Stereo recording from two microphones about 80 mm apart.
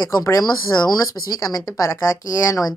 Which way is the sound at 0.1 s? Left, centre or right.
Left.